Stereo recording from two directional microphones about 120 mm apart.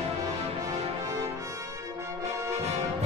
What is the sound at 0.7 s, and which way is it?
Music, 60° right (ahead or behind).